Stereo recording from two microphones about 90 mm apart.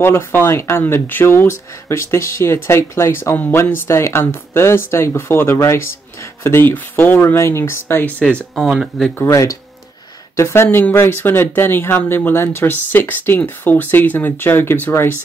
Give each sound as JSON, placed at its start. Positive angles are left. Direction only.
{"t": 0.0, "sound": "speech", "side_deg": 25}
{"t": 8.6, "sound": "speech", "side_deg": 0}
{"t": 9.1, "sound": "speech", "side_deg": 30}